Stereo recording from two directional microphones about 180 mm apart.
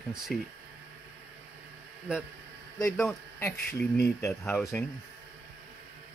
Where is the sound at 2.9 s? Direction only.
5° left (ahead or behind).